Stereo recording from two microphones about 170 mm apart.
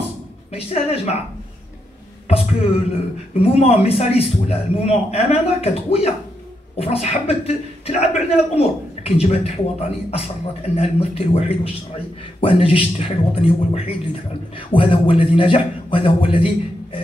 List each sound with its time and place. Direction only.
0.5 s a man's voice: 35° left (ahead or behind)
2.2 s a sound: 40° left (ahead or behind)
3.4 s a man's voice: 35° left (ahead or behind)